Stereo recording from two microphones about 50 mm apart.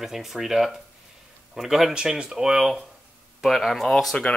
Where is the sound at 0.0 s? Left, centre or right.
Centre.